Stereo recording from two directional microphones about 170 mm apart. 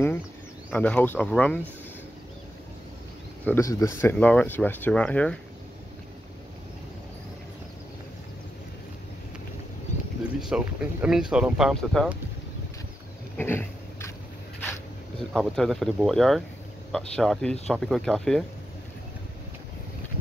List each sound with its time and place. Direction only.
0.7 s speech: 10° left (ahead or behind)
3.4 s speech: 15° left (ahead or behind)
10.4 s speech: 5° right (ahead or behind)
13.4 s a sound: 15° left (ahead or behind)
14.6 s speech: 10° left (ahead or behind)